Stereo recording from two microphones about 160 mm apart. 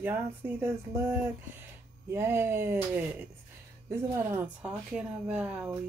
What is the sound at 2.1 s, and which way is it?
Speech, 15° right (ahead or behind).